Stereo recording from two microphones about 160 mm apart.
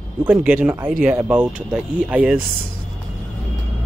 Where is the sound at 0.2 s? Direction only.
10° right (ahead or behind).